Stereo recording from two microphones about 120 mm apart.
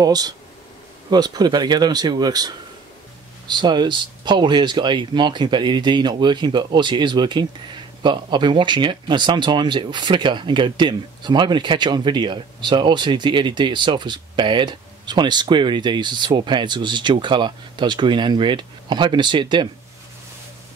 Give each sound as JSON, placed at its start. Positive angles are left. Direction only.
{"t": 0.0, "sound": "speech", "side_deg": -35}